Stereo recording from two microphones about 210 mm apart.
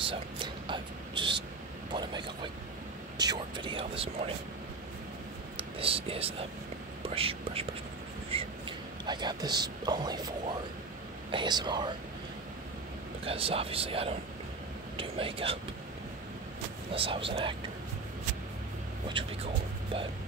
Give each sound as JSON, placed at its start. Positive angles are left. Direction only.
{"t": 0.1, "sound": "whispering", "side_deg": -25}
{"t": 1.9, "sound": "speech", "side_deg": -20}
{"t": 5.6, "sound": "speech", "side_deg": -25}
{"t": 11.3, "sound": "speech", "side_deg": -20}
{"t": 13.2, "sound": "speech", "side_deg": -25}
{"t": 16.9, "sound": "speech", "side_deg": -25}
{"t": 19.2, "sound": "speech", "side_deg": -25}